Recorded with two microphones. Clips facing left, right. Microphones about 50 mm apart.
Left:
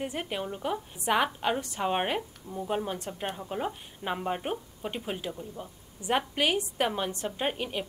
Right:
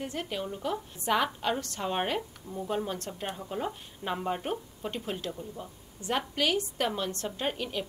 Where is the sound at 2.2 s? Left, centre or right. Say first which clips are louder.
Even; centre.